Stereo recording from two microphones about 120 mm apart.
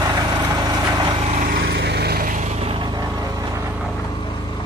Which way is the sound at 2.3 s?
80° right.